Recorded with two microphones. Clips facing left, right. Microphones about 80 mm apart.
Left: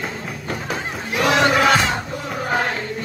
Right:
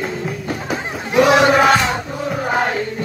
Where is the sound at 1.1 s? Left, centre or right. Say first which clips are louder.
Right 5 dB; centre.